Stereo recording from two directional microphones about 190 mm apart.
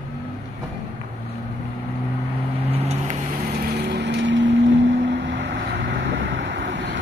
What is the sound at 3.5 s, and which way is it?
Vehicle, 55° right (ahead or behind).